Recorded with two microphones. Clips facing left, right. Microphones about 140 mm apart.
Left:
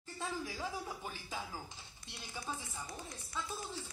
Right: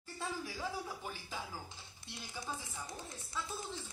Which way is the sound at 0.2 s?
15° left (ahead or behind).